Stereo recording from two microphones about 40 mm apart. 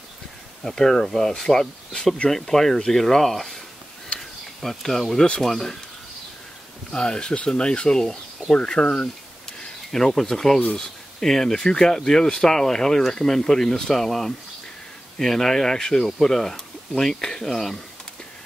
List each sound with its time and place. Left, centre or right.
0.7 s speech: centre
4.6 s speech: centre
6.9 s speech: left
9.9 s speech: centre